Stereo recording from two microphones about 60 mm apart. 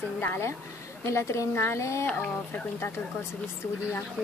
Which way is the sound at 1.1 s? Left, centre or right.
Left.